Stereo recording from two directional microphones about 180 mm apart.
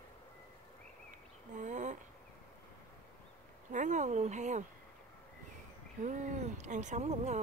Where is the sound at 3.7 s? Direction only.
45° right (ahead or behind).